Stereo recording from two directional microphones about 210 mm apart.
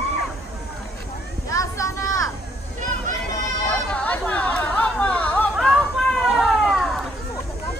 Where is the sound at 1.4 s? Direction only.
15° left (ahead or behind).